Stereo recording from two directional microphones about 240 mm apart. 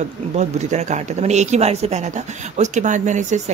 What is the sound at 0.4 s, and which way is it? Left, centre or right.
Speech, right.